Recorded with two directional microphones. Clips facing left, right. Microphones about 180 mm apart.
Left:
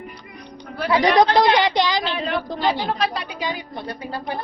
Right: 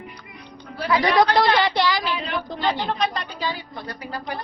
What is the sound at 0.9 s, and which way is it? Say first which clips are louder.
A woman's voice: left 2 dB; 20° left (ahead or behind).